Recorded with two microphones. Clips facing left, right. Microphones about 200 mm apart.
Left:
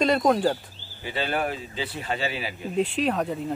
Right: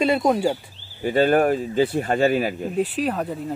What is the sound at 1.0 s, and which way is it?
Speech, 50° right (ahead or behind).